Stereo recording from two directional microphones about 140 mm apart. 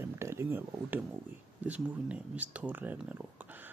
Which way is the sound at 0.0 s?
20° right (ahead or behind).